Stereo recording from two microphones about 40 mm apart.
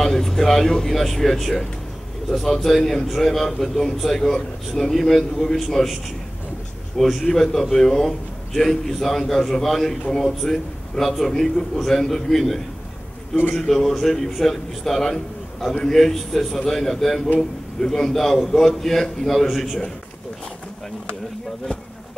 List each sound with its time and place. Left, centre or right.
0.0 s a man's voice: centre
7.0 s a man's voice: centre